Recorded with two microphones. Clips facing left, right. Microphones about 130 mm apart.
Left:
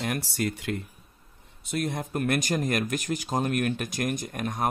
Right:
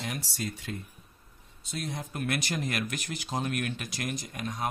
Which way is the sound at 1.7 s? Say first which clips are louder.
Left 7 dB; 55° left (ahead or behind).